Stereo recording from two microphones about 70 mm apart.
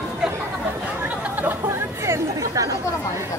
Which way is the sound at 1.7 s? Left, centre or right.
Right.